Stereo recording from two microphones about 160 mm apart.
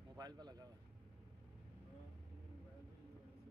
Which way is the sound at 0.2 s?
25° right (ahead or behind).